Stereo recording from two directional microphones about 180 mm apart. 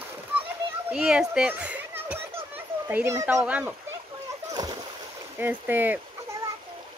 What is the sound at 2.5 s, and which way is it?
Children playing, 10° right (ahead or behind).